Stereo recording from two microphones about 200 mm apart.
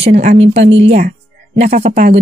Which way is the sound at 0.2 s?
30° right (ahead or behind).